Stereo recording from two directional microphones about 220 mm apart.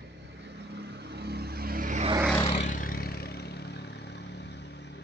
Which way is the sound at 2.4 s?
30° left (ahead or behind).